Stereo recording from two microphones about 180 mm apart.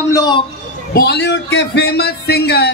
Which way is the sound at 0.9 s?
65° left (ahead or behind).